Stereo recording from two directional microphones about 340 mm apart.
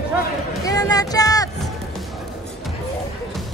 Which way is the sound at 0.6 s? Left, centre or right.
Centre.